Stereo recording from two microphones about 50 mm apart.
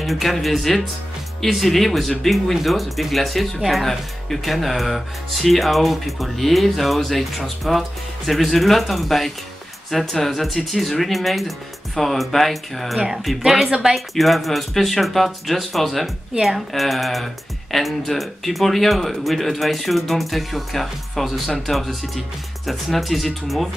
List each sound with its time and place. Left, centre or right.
0.0 s speech: centre
13.7 s speech: centre
13.9 s speech: centre